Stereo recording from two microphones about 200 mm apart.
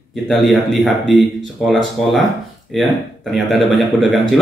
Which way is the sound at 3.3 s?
Centre (ahead or behind).